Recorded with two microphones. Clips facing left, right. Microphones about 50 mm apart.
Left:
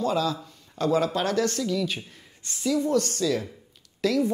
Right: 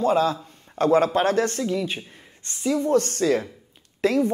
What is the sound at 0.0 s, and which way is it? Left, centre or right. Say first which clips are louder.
Speech: right 5 dB; right.